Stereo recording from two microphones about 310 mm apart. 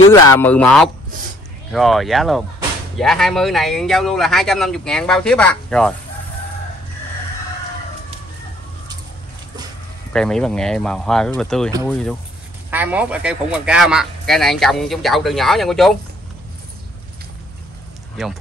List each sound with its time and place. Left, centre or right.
0.0 s speech: centre
10.1 s speech: centre